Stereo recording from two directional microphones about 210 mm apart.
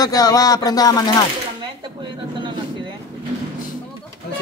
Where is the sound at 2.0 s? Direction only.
25° right (ahead or behind).